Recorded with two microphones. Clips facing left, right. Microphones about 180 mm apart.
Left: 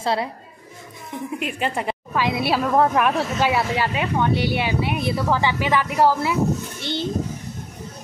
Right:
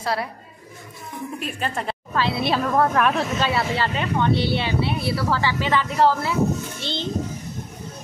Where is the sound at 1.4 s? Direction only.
15° left (ahead or behind).